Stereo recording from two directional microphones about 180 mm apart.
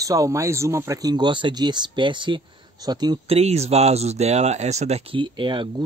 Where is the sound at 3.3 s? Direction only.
35° right (ahead or behind).